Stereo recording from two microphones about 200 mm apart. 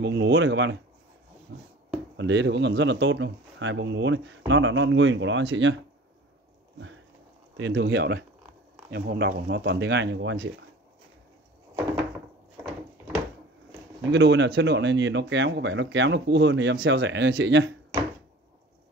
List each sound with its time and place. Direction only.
0.0 s speech: 60° right (ahead or behind)
7.5 s speech: 65° right (ahead or behind)
14.1 s speech: 65° right (ahead or behind)